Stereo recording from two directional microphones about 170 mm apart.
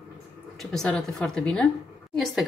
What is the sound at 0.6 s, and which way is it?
Speech, 5° left (ahead or behind).